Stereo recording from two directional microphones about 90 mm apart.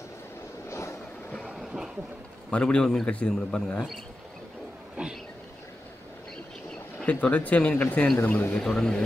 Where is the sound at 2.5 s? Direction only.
10° left (ahead or behind).